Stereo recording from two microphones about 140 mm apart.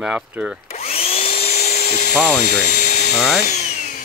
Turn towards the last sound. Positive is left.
turn(degrees=60)  # may be behind; listen again after turning